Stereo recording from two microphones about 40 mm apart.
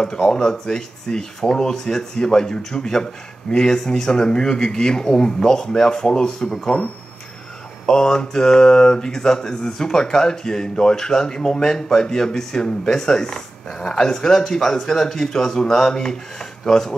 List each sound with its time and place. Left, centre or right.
0.0 s speech: centre
6.7 s speech: left
7.8 s speech: centre